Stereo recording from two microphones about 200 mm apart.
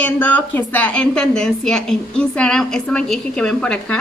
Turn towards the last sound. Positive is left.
turn(degrees=5)  # may be behind; listen again after turning